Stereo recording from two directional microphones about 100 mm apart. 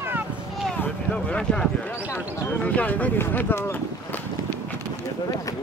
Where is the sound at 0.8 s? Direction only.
10° left (ahead or behind).